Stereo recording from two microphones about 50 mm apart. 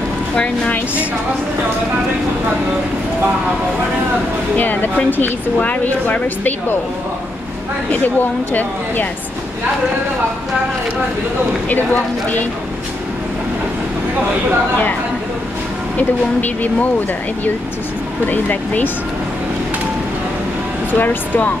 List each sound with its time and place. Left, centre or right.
4.6 s speech: left
7.9 s speech: left
11.7 s speech: left
16.0 s speech: left
18.2 s speech: left
20.9 s speech: left